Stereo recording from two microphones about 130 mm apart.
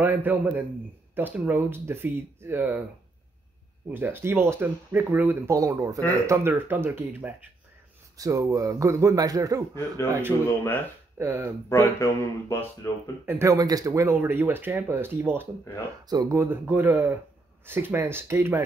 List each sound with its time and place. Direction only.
0.0 s speech: 15° right (ahead or behind)
3.9 s speech: 15° right (ahead or behind)
8.2 s speech: 25° right (ahead or behind)
9.8 s speech: 15° left (ahead or behind)
11.1 s speech: 15° right (ahead or behind)
11.7 s speech: 20° left (ahead or behind)
13.2 s speech: 20° right (ahead or behind)
16.1 s speech: 30° right (ahead or behind)
16.3 s speech: 15° right (ahead or behind)